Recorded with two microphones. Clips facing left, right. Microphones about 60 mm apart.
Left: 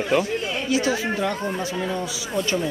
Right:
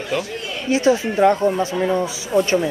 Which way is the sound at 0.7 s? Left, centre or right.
Right.